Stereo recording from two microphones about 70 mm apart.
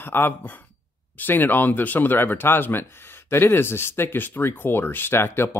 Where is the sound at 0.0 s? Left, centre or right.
Left.